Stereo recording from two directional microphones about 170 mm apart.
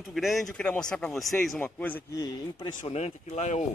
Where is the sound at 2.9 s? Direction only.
40° left (ahead or behind).